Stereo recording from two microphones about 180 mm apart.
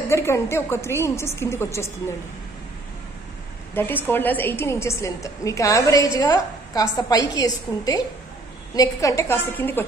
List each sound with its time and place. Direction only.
0.1 s a woman's voice: 15° left (ahead or behind)
3.7 s a woman's voice: 10° left (ahead or behind)